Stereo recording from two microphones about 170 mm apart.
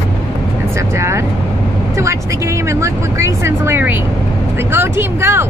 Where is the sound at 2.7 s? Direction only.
15° right (ahead or behind).